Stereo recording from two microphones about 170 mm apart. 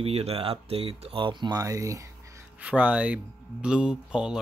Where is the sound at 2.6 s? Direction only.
5° right (ahead or behind).